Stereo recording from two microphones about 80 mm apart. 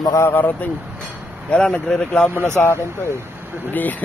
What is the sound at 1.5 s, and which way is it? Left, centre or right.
Speech, centre.